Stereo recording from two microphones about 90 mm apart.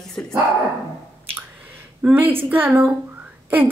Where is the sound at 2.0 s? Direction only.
20° right (ahead or behind).